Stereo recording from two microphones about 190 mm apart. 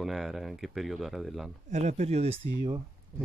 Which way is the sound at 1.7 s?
35° right (ahead or behind).